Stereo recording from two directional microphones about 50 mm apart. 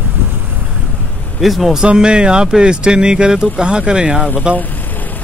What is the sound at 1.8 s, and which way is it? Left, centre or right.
Speech, centre.